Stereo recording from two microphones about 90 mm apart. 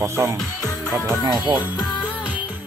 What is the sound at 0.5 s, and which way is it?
Music, 40° left (ahead or behind).